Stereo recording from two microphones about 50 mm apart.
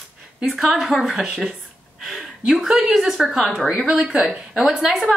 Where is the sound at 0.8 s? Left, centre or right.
Centre.